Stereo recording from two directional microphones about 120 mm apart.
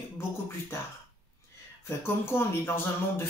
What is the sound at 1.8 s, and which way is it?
Speech, 20° left (ahead or behind).